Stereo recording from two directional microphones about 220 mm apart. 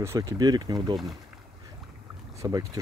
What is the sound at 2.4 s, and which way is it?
Speech, 15° right (ahead or behind).